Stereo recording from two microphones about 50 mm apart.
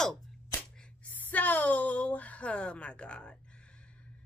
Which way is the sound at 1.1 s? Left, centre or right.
Left.